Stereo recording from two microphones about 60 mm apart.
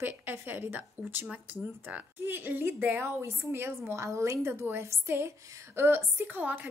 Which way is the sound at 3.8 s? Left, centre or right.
Right.